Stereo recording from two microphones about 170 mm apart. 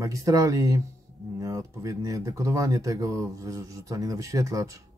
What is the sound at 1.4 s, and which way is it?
Speech, 20° right (ahead or behind).